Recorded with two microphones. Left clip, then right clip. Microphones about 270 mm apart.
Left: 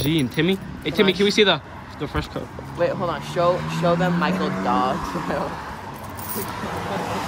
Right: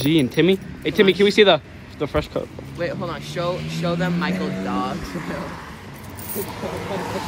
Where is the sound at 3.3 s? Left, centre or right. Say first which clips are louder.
Left 6 dB; left.